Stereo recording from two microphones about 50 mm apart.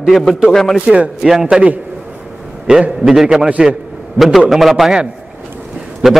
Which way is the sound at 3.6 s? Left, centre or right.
Centre.